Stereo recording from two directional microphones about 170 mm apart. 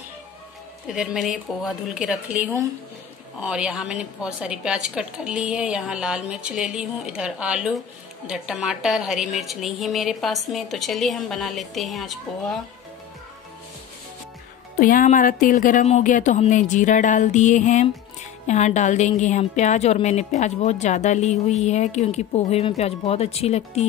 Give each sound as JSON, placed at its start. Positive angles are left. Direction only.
{"t": 0.8, "sound": "a woman's voice", "side_deg": 0}
{"t": 14.8, "sound": "a woman's voice", "side_deg": 55}